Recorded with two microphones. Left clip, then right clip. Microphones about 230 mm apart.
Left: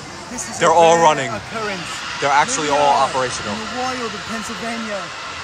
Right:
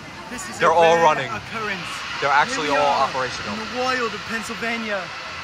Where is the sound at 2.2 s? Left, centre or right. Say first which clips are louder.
Left 2 dB; centre.